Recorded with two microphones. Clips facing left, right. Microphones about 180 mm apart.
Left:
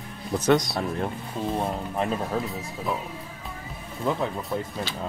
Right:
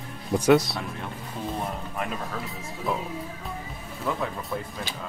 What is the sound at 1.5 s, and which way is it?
Speech, 30° left (ahead or behind).